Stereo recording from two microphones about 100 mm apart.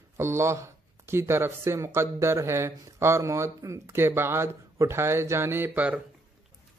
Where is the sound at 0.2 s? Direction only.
25° right (ahead or behind).